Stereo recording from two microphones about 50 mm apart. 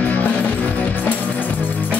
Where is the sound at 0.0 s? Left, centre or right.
Left.